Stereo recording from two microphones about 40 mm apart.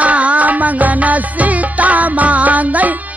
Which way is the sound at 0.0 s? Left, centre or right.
Right.